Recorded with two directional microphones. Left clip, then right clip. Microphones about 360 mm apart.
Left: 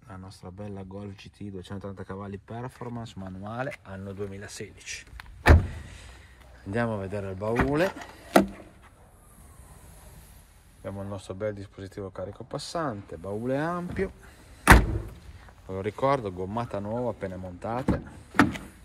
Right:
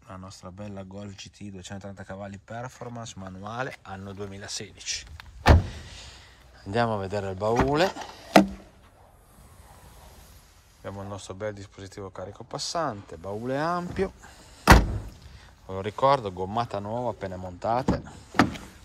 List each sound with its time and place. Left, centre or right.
0.1 s speech: centre
5.7 s a sound: centre
6.6 s speech: centre
8.3 s a sound: right
10.8 s speech: centre
15.6 s speech: centre
17.9 s door: centre